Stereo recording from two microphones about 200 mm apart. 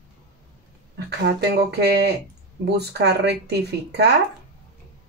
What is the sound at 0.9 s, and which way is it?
Speech, 55° right (ahead or behind).